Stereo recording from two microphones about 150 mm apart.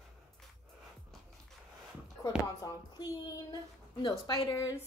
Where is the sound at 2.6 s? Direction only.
25° left (ahead or behind).